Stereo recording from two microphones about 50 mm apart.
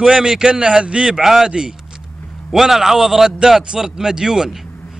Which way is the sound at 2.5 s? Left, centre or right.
Centre.